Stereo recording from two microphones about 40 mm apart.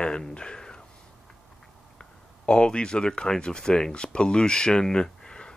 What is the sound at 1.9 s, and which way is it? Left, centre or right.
Speech, left.